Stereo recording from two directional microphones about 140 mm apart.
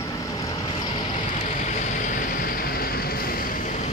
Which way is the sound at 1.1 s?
55° left (ahead or behind).